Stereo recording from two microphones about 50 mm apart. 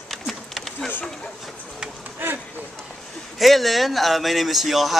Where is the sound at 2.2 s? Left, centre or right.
Right.